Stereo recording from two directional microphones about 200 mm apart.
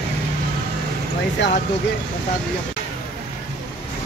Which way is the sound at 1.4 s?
65° left (ahead or behind).